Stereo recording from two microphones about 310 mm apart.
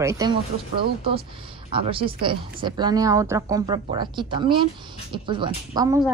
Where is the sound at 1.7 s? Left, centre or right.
Centre.